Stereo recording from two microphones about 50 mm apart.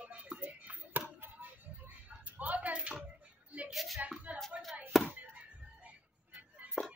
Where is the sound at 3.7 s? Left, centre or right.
Centre.